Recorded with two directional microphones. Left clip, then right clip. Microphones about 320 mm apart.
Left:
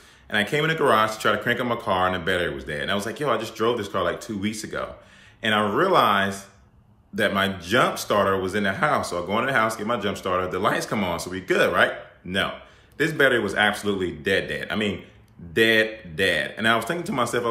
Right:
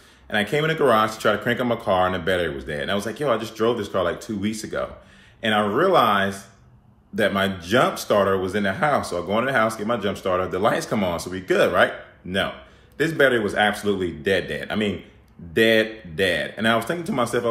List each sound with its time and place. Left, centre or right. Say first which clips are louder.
0.3 s speech: right 1 dB; centre